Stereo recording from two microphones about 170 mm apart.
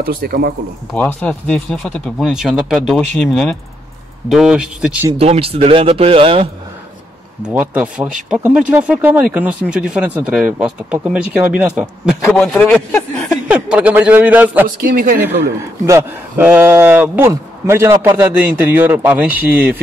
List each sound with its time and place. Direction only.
0.0 s speech: 60° right (ahead or behind)
0.9 s speech: 10° left (ahead or behind)
5.1 s a man's voice: 35° right (ahead or behind)
7.4 s a man's voice: 10° right (ahead or behind)
14.8 s speech: 55° right (ahead or behind)
15.1 s a man's voice: 10° right (ahead or behind)